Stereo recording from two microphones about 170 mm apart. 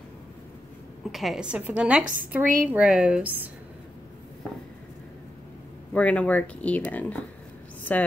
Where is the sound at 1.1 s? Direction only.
Centre (ahead or behind).